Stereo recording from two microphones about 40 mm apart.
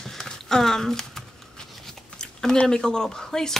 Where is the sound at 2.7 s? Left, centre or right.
Centre.